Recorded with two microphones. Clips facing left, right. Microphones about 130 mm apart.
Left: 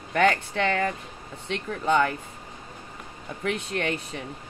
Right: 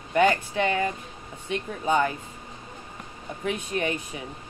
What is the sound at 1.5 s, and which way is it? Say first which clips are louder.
Speech: left 1 dB; 70° left (ahead or behind).